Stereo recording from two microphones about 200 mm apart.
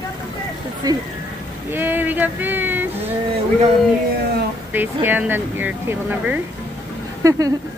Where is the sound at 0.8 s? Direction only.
20° right (ahead or behind).